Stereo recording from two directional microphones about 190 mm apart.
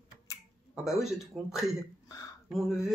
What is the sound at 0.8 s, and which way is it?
Speech, centre (ahead or behind).